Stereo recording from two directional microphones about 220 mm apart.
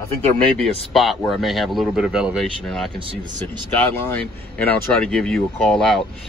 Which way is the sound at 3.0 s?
25° right (ahead or behind).